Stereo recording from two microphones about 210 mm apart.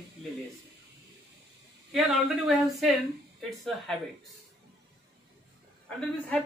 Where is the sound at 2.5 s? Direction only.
Centre (ahead or behind).